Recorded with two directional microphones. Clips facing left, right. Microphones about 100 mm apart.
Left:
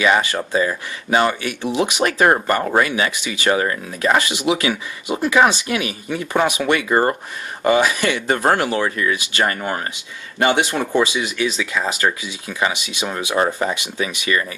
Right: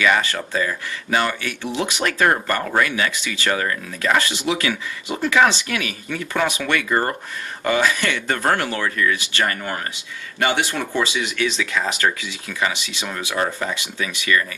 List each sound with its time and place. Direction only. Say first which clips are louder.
0.0 s speech: left 2 dB; 20° left (ahead or behind)